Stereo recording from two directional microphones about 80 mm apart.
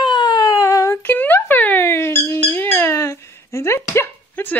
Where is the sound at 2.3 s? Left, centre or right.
Left.